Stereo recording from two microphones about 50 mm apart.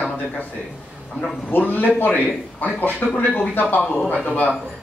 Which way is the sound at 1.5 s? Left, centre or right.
Left.